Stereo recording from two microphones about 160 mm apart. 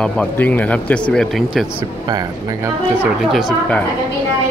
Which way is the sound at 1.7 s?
25° right (ahead or behind).